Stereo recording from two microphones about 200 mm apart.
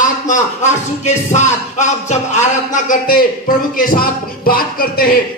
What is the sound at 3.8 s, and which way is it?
A man's voice, 45° left (ahead or behind).